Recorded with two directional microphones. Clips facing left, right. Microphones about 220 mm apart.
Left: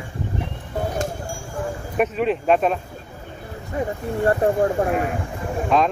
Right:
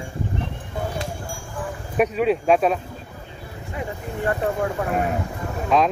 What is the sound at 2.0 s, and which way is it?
Speech, centre (ahead or behind).